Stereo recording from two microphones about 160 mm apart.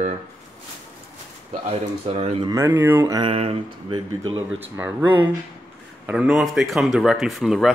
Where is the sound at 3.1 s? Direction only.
35° right (ahead or behind).